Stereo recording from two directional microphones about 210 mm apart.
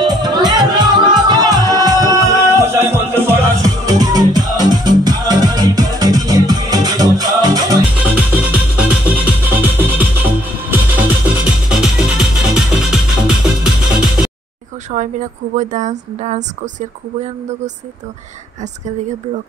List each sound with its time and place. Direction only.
0.0 s music: 20° right (ahead or behind)
8.0 s music: 5° right (ahead or behind)
14.9 s a woman's voice: 35° right (ahead or behind)